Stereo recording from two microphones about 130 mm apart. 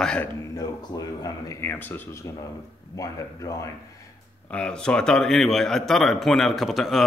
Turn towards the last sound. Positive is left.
turn(degrees=0)  # may be behind; listen again after turning